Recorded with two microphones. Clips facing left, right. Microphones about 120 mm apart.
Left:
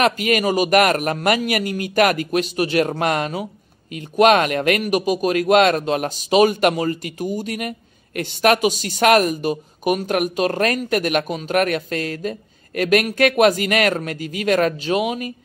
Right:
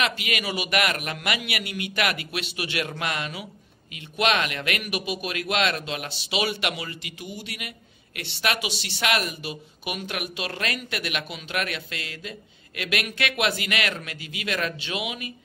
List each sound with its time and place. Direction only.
0.0 s speech: 45° left (ahead or behind)